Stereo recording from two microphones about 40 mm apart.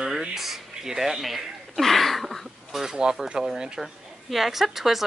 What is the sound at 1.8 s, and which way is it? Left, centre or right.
A woman's voice, centre.